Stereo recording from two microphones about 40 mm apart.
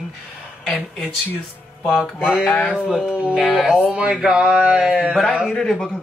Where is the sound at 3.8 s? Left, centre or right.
Right.